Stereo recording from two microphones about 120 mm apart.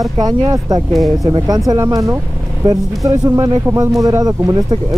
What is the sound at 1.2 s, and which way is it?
Speech, 35° right (ahead or behind).